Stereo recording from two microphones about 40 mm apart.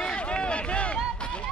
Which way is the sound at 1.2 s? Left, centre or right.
Left.